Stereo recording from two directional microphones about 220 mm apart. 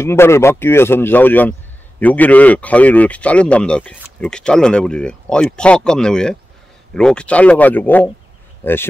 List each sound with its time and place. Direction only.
0.0 s speech: 10° left (ahead or behind)